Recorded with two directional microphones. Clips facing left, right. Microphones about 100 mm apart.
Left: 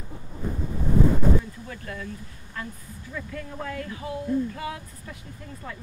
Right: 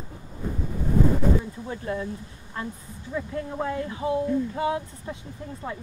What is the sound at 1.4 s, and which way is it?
Speech, 25° right (ahead or behind).